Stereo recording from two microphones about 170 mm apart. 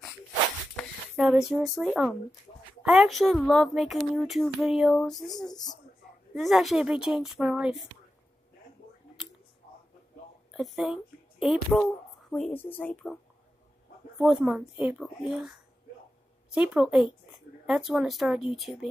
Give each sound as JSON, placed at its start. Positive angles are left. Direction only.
{"t": 0.7, "sound": "speech", "side_deg": 0}
{"t": 10.5, "sound": "speech", "side_deg": 0}